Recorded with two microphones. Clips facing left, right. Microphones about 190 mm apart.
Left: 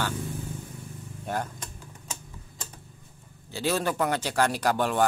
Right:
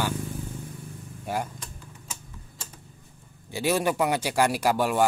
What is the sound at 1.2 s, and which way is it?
Speech, 10° right (ahead or behind).